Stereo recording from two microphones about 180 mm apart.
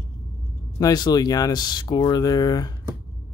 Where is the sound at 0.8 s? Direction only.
20° left (ahead or behind).